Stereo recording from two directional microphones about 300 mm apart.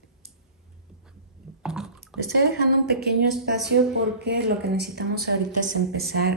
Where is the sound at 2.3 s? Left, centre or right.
Right.